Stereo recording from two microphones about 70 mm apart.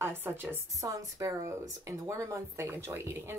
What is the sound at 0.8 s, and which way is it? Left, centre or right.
Speech, right.